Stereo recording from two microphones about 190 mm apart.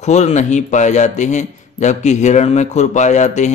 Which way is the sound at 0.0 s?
35° left (ahead or behind).